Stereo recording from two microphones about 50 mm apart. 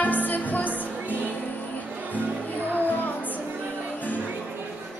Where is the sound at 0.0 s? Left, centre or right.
Left.